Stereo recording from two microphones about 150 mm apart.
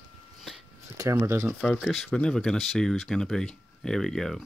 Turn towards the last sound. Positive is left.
turn(degrees=5)  # may be behind; listen again after turning